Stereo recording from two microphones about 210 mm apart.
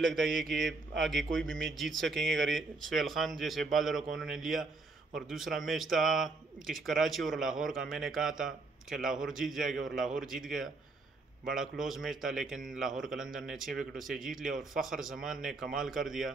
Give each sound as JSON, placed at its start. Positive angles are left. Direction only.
{"t": 0.1, "sound": "speech", "side_deg": 0}
{"t": 14.5, "sound": "a man's voice", "side_deg": -40}
{"t": 14.8, "sound": "speech", "side_deg": 0}